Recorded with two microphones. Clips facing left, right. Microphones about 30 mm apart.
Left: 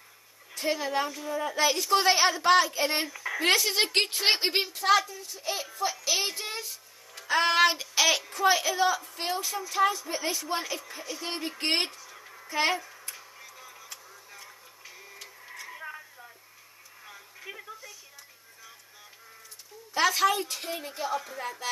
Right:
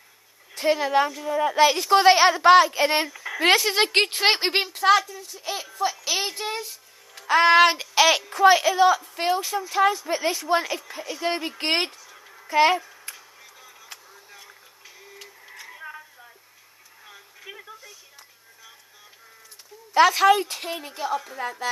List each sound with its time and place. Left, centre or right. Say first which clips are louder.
0.6 s a child's voice: right 8 dB; right
3.1 s a sound: even; centre
3.3 s a child's voice: right 5 dB; right
5.1 s speech: right 2 dB; centre
6.0 s speech: right 2 dB; right
6.4 s a child's voice: right 6 dB; right
7.7 s a child's voice: right 6 dB; right
12.0 s a sound: even; centre
12.4 s speech: right 8 dB; right
13.1 s a sound: even; centre
15.0 s printer: right 4 dB; centre
15.6 s a sound: right 2 dB; centre
19.9 s speech: right 8 dB; right
20.7 s speech: right 4 dB; centre